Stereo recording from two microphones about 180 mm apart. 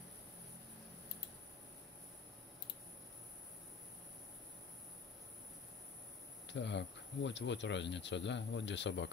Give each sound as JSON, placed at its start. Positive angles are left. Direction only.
{"t": 6.4, "sound": "speech", "side_deg": 80}